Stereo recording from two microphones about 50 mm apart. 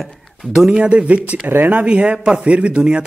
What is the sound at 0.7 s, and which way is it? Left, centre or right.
Speech, right.